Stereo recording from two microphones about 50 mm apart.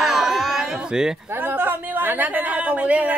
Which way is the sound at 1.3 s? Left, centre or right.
Right.